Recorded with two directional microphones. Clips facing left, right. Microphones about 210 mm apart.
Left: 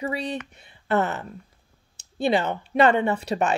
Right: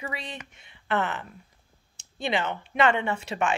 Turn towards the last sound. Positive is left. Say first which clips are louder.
# left 4 dB
turn(degrees=35)  # may be behind; listen again after turning